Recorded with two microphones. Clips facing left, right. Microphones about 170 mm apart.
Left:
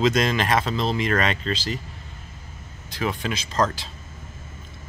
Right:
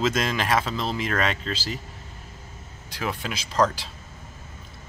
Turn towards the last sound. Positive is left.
turn(degrees=-10)  # may be behind; listen again after turning